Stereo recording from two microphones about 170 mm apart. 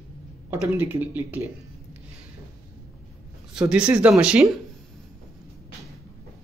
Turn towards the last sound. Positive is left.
turn(degrees=-5)  # may be behind; listen again after turning